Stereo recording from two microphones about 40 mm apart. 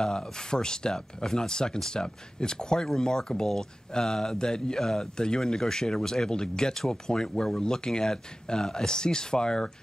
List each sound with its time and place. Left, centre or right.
0.0 s speech: centre